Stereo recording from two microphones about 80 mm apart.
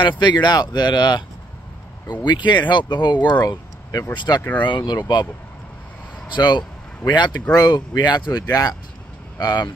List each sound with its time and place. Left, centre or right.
0.2 s speech: left
4.4 s speech: left
4.6 s speech: left
6.2 s speech: left